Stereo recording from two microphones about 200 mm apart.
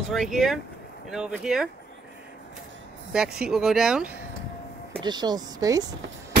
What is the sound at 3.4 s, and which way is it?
Speech, centre (ahead or behind).